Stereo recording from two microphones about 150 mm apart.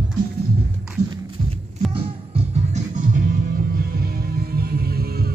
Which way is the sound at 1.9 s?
40° right (ahead or behind).